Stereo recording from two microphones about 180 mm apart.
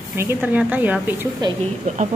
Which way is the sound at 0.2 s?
10° right (ahead or behind).